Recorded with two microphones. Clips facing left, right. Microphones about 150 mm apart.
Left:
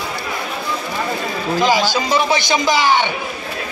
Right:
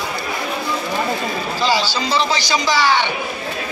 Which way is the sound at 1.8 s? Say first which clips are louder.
Left 4 dB; 50° left (ahead or behind).